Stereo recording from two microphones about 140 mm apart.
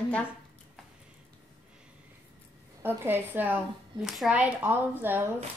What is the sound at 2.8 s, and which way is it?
Speech, 15° right (ahead or behind).